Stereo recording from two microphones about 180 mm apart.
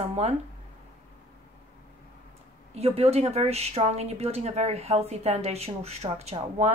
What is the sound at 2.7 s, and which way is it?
A woman's voice, 35° right (ahead or behind).